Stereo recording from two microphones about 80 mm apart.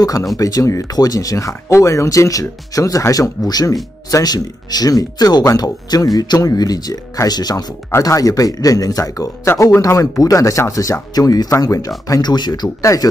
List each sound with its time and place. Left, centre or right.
0.0 s speech: left
12.2 s speech: left
12.8 s speech: left